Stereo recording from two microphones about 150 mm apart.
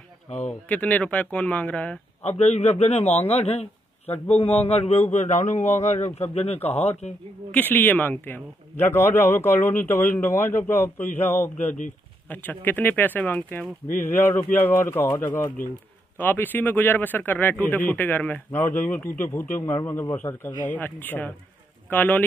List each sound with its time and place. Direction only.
0.5 s a man's voice: 10° left (ahead or behind)
2.2 s speech: 45° left (ahead or behind)
6.6 s a man's voice: 15° left (ahead or behind)